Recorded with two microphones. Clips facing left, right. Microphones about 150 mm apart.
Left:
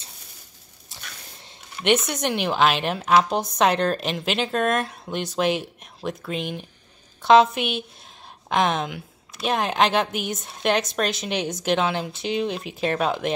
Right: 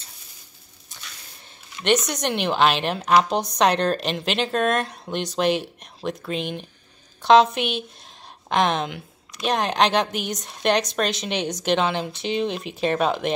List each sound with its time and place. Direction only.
2.2 s a woman's voice: 5° left (ahead or behind)